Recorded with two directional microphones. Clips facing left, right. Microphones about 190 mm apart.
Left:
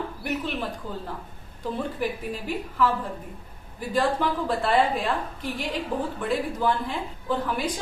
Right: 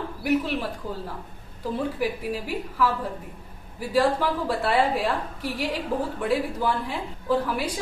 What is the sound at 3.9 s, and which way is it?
A woman's voice, 10° right (ahead or behind).